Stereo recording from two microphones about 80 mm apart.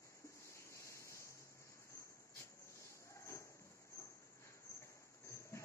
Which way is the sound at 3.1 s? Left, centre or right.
Left.